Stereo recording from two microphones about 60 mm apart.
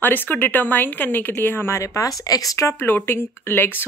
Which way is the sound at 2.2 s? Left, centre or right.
Left.